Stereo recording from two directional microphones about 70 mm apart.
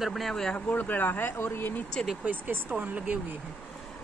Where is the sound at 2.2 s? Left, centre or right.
Right.